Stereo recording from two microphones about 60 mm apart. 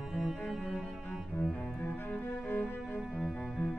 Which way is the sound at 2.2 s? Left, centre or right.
Left.